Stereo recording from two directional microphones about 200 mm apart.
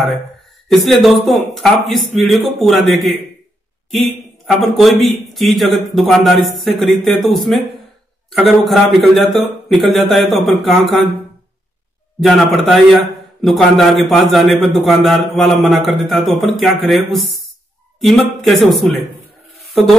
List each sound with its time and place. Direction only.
0.7 s a man's voice: centre (ahead or behind)
12.2 s a man's voice: centre (ahead or behind)